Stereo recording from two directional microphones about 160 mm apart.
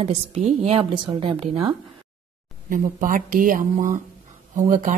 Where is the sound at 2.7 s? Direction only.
55° right (ahead or behind).